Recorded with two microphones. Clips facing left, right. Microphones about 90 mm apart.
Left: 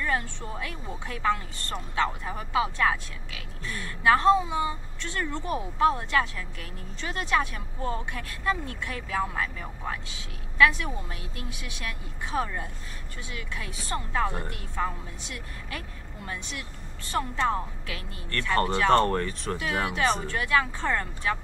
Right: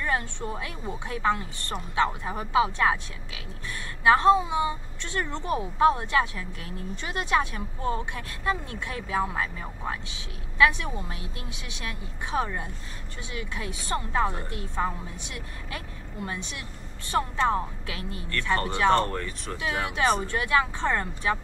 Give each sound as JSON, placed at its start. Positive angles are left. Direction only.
{"t": 0.0, "sound": "a woman's voice", "side_deg": -25}
{"t": 18.9, "sound": "speech", "side_deg": 45}
{"t": 20.2, "sound": "a woman's voice", "side_deg": -25}